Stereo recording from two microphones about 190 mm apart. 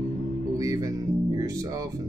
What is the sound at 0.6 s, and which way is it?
Speech, 20° right (ahead or behind).